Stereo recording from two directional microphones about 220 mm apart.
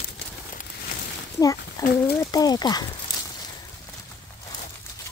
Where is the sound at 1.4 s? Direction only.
15° left (ahead or behind).